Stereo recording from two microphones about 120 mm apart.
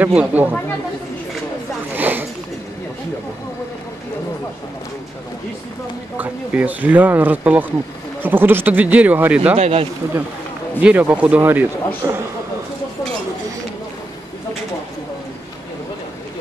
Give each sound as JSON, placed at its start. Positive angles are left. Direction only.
{"t": 0.0, "sound": "speech", "side_deg": -10}
{"t": 2.0, "sound": "a sound", "side_deg": -15}
{"t": 6.1, "sound": "speech", "side_deg": -15}
{"t": 9.6, "sound": "speech", "side_deg": -60}
{"t": 10.8, "sound": "a man's voice", "side_deg": -10}